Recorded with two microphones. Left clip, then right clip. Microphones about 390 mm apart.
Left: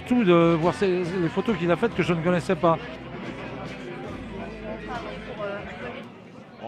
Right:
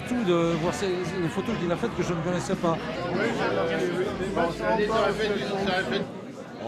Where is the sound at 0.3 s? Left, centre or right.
Left.